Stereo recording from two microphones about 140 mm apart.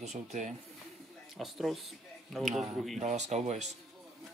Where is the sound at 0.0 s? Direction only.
55° right (ahead or behind).